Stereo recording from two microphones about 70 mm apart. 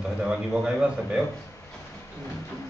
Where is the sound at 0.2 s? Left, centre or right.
Centre.